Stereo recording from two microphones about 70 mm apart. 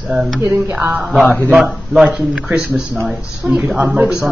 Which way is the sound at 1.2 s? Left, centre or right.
Left.